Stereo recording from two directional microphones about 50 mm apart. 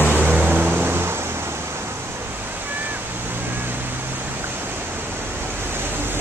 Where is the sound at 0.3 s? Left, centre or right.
Right.